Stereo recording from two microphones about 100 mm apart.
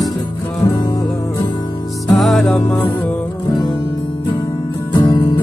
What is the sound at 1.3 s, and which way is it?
Music, 45° left (ahead or behind).